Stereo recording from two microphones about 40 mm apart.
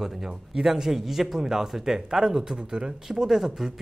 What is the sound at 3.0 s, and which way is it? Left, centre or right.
Speech, centre.